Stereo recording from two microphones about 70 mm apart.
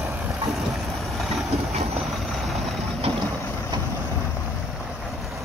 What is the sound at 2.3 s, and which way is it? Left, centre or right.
Vehicle, centre.